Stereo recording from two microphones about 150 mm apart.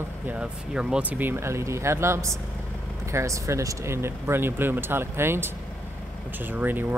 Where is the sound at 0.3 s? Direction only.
5° right (ahead or behind).